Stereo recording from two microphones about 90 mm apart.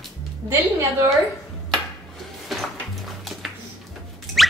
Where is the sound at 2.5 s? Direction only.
Centre (ahead or behind).